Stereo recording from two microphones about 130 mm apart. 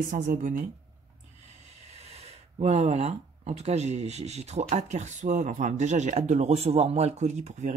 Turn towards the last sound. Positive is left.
turn(degrees=-60)  # may be behind; listen again after turning